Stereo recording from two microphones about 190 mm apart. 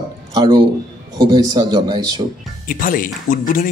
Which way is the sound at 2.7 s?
45° left (ahead or behind).